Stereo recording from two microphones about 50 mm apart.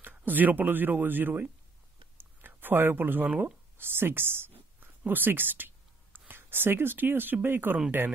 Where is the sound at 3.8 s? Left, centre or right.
Right.